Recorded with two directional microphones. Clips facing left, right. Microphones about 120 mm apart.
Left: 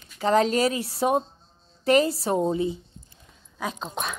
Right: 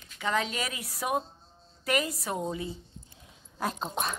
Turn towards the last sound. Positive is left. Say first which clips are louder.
# left 1 dB
turn(degrees=-5)  # may be behind; listen again after turning